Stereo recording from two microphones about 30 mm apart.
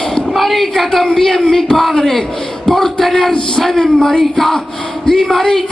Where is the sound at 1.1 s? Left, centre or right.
Centre.